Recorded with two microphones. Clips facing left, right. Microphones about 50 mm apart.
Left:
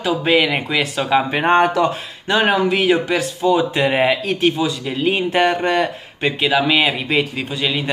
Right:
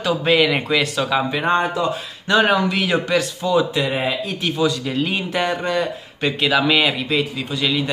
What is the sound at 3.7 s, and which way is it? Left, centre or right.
Speech, left.